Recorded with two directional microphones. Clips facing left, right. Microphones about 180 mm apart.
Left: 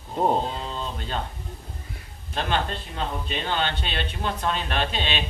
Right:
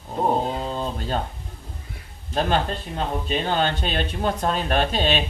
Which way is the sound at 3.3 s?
40° right (ahead or behind).